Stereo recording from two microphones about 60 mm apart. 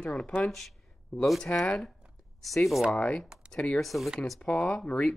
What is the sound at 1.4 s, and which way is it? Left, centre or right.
Speech, centre.